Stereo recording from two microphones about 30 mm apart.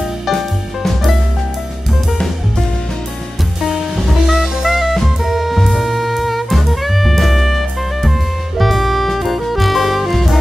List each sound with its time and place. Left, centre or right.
0.3 s music: centre
3.9 s jazz: centre
5.0 s drum kit: centre
5.6 s music: centre